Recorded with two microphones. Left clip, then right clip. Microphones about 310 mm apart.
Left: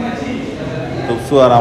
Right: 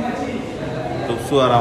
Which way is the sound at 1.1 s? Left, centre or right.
Centre.